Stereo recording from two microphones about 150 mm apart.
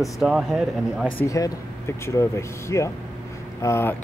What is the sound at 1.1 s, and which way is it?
Speech, 20° left (ahead or behind).